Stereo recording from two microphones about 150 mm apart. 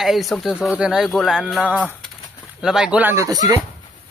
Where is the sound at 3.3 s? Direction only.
25° right (ahead or behind).